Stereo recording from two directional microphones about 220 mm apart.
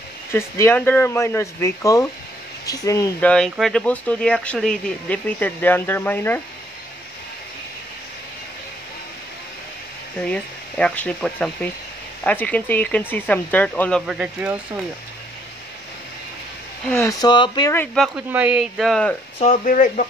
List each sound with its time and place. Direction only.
0.3 s speech: 10° left (ahead or behind)
10.1 s speech: 5° left (ahead or behind)
16.9 s speech: 15° left (ahead or behind)
17.9 s speech: centre (ahead or behind)
19.3 s speech: 35° left (ahead or behind)